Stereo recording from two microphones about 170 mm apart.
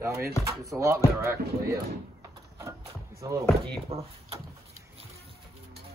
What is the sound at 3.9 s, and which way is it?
Speech, 35° right (ahead or behind).